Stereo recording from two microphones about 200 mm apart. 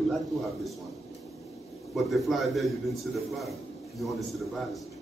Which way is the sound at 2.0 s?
Centre (ahead or behind).